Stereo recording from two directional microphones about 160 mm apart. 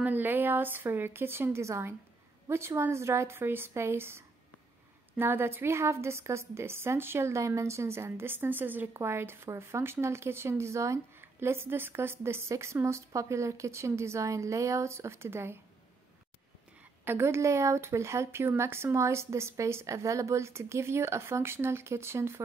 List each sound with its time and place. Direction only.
0.0 s a woman's voice: 10° right (ahead or behind)
17.0 s a woman's voice: 15° right (ahead or behind)